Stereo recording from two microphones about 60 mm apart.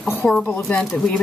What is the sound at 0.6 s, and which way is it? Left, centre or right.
Speech, centre.